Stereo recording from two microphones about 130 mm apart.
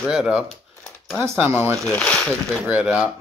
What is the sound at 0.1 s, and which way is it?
Speech, 5° right (ahead or behind).